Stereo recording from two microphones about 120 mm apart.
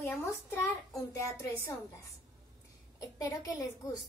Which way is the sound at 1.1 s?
25° left (ahead or behind).